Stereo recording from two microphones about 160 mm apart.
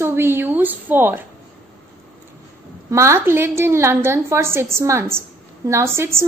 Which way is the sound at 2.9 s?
15° right (ahead or behind).